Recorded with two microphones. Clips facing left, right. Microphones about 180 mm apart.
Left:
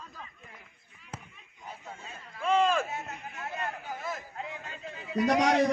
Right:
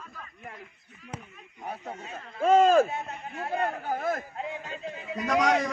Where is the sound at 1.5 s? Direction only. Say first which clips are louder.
Right 8 dB; 60° right (ahead or behind).